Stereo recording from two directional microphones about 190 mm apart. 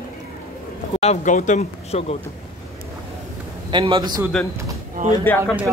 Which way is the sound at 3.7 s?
25° right (ahead or behind).